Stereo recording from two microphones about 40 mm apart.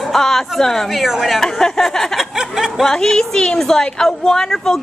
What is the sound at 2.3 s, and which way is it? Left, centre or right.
Snicker, centre.